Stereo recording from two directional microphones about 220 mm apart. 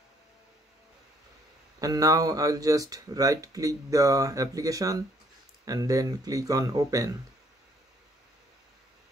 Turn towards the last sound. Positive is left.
turn(degrees=-15)  # may be behind; listen again after turning